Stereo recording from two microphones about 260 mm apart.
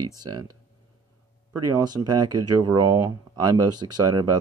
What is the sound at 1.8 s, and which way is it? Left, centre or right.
Speech, centre.